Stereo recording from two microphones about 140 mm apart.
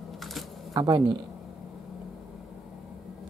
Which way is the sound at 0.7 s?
25° right (ahead or behind).